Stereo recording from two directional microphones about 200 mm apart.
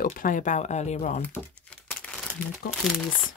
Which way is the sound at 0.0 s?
45° left (ahead or behind).